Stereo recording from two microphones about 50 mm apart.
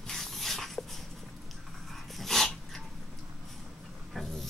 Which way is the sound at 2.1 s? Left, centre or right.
Centre.